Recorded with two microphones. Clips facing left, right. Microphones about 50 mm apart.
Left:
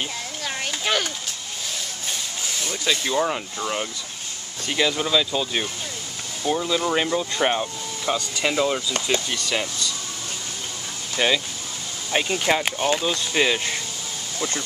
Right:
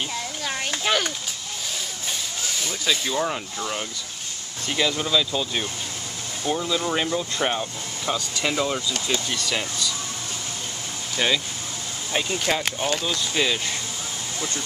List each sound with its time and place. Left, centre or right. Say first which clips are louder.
0.4 s a sound: left 1 dB; centre
2.0 s speech: even; centre
11.1 s speech: left 2 dB; centre
12.1 s speech: left 3 dB; centre